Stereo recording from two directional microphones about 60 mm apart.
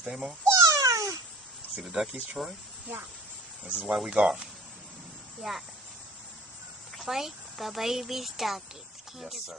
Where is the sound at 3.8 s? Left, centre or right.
Centre.